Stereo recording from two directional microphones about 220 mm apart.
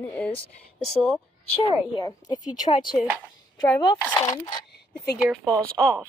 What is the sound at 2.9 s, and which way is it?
Speech, 5° right (ahead or behind).